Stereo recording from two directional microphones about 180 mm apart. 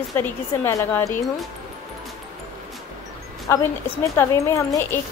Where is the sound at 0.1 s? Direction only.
15° left (ahead or behind).